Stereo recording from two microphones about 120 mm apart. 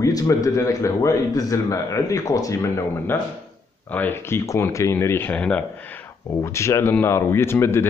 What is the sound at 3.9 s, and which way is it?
Speech, 15° left (ahead or behind).